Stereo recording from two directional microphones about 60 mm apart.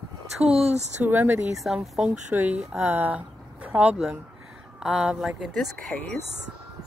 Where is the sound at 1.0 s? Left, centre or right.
Right.